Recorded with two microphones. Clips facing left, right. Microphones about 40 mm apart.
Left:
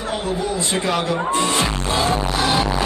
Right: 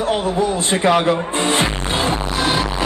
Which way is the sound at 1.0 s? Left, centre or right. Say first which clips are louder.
Right 2 dB; right.